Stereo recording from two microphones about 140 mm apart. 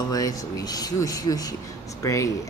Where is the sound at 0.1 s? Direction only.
25° left (ahead or behind).